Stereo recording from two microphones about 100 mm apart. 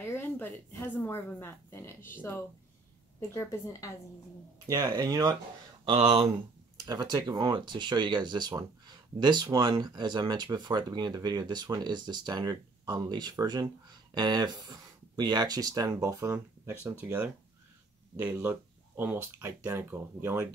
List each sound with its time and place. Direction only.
0.1 s speech: 20° left (ahead or behind)
3.2 s speech: 30° left (ahead or behind)
4.6 s speech: 40° right (ahead or behind)
5.9 s speech: 70° right (ahead or behind)
6.9 s speech: 45° right (ahead or behind); by 20.4 s 20° right (ahead or behind)